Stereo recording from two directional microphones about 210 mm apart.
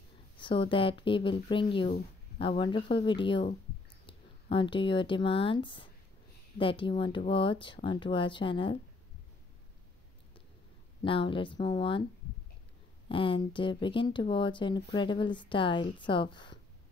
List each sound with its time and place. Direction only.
0.4 s speech: 25° left (ahead or behind)
11.0 s speech: 25° left (ahead or behind)
13.1 s speech: 25° left (ahead or behind)